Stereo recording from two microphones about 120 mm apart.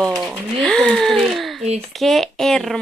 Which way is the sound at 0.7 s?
5° left (ahead or behind).